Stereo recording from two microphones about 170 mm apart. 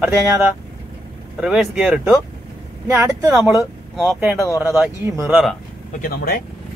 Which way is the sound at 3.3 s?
5° right (ahead or behind).